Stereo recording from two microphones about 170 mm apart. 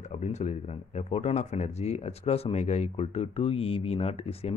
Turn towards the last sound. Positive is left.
turn(degrees=35)  # may be behind; listen again after turning